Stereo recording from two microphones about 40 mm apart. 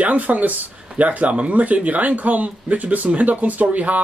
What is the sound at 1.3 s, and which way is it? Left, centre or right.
Speech, right.